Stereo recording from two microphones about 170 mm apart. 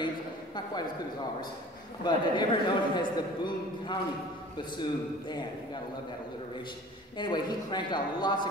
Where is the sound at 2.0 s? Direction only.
25° left (ahead or behind).